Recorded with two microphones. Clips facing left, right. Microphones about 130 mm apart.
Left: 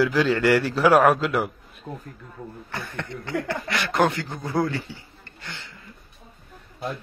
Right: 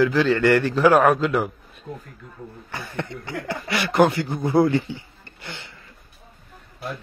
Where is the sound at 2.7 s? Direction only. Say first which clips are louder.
Right 3 dB; centre (ahead or behind); by 5.7 s 15° right (ahead or behind).